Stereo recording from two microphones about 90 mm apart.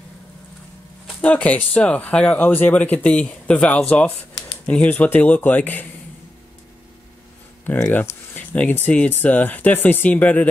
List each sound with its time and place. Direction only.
1.2 s speech: 15° left (ahead or behind)
7.6 s a sound: 20° left (ahead or behind)
8.5 s speech: 20° left (ahead or behind)